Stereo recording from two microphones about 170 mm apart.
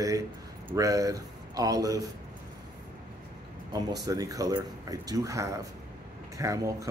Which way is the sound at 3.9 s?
20° right (ahead or behind).